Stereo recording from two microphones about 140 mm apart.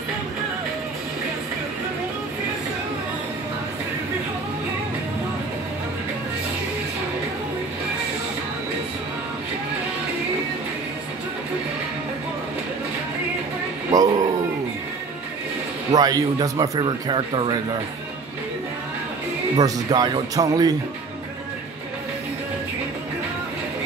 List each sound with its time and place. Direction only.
13.9 s dog: 25° right (ahead or behind)
15.9 s speech: 25° right (ahead or behind)
19.5 s speech: 30° right (ahead or behind)